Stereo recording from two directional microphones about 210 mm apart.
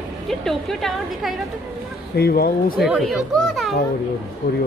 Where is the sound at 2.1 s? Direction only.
45° left (ahead or behind).